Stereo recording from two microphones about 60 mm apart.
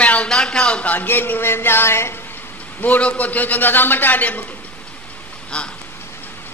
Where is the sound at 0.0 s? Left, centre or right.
Left.